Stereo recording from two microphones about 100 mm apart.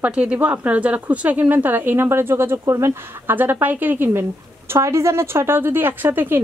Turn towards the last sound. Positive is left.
turn(degrees=-20)  # may be behind; listen again after turning